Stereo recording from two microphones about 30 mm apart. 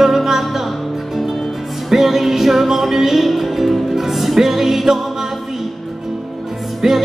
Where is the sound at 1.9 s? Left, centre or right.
Centre.